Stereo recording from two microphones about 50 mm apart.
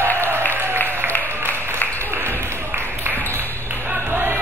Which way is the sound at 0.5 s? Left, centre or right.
Right.